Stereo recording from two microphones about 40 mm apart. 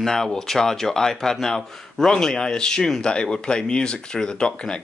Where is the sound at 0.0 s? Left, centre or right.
Centre.